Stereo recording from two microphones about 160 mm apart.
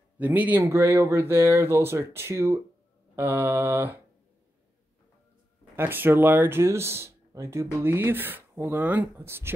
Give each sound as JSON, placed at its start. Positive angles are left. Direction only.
{"t": 0.2, "sound": "speech", "side_deg": -10}
{"t": 5.8, "sound": "speech", "side_deg": -15}